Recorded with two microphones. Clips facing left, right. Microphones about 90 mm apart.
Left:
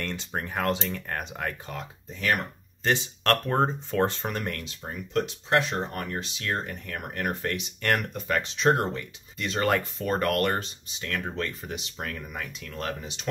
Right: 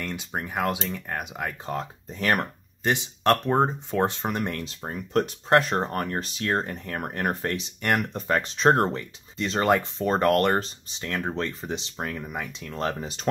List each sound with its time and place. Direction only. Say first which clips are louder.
0.0 s speech: right 1 dB; 10° right (ahead or behind)
1.7 s speech: right 6 dB; 35° right (ahead or behind)
2.8 s speech: right 2 dB; 15° right (ahead or behind)
4.6 s speech: right 3 dB; 40° right (ahead or behind)
7.8 s speech: right 1 dB; 15° right (ahead or behind)
8.1 s speech: right 3 dB; 35° right (ahead or behind)